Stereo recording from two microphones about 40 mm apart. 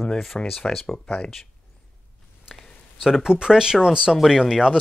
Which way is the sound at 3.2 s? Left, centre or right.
Centre.